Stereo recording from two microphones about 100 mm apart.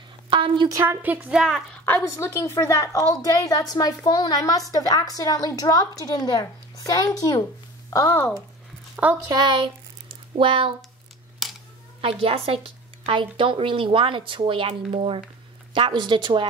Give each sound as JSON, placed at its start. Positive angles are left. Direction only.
{"t": 0.3, "sound": "a woman's voice", "side_deg": -60}
{"t": 0.7, "sound": "a woman's voice", "side_deg": -30}
{"t": 1.0, "sound": "a woman's voice", "side_deg": -15}
{"t": 1.4, "sound": "a woman's voice", "side_deg": 5}
{"t": 2.0, "sound": "a woman's voice", "side_deg": 30}
{"t": 6.8, "sound": "a woman's voice", "side_deg": 35}
{"t": 8.9, "sound": "a sound", "side_deg": -15}
{"t": 9.3, "sound": "speech", "side_deg": -45}
{"t": 9.6, "sound": "a sound", "side_deg": -65}
{"t": 11.4, "sound": "a sound", "side_deg": 0}
{"t": 12.0, "sound": "a woman's voice", "side_deg": -70}
{"t": 15.7, "sound": "speech", "side_deg": -55}